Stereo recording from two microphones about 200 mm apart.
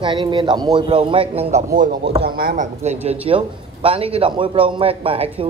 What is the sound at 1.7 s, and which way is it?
A man's voice, 45° right (ahead or behind).